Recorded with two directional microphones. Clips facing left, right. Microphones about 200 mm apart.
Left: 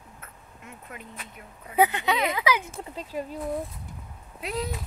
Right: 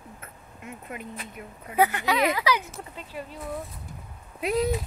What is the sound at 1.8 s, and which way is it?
Speech, 20° left (ahead or behind).